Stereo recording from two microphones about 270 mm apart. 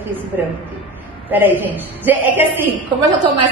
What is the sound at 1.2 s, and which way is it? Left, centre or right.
A woman's voice, centre.